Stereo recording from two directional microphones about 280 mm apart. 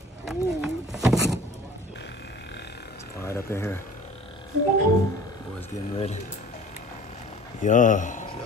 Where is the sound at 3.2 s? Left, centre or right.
Centre.